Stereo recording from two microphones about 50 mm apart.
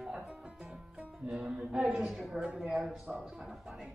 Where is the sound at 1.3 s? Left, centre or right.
Centre.